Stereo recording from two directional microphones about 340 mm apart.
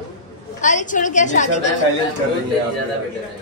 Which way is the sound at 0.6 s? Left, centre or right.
Left.